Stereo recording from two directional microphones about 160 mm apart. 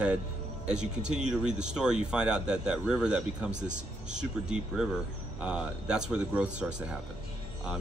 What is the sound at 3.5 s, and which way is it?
Speech, 50° right (ahead or behind).